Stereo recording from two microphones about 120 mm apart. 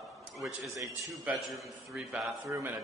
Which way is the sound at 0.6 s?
25° right (ahead or behind).